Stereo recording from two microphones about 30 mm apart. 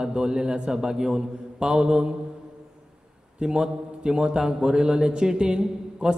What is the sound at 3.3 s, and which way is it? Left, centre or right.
A man's voice, right.